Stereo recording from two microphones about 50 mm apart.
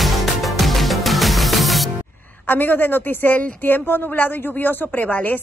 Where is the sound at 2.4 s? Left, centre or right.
Left.